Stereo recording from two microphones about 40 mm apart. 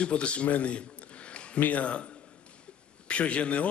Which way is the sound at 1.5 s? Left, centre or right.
Left.